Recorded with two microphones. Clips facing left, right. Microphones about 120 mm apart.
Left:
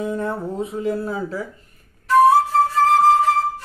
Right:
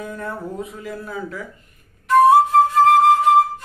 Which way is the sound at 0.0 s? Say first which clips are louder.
Left 5 dB; 25° left (ahead or behind).